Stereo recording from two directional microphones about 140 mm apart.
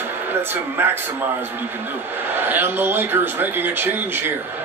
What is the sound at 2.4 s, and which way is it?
Speech, 15° right (ahead or behind).